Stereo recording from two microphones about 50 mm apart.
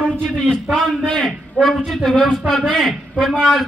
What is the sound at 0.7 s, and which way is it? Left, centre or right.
Speech, centre.